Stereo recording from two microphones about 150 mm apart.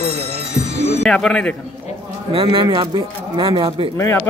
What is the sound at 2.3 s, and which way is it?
Speech, 35° right (ahead or behind).